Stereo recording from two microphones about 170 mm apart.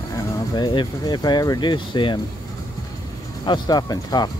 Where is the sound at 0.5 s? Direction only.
25° left (ahead or behind).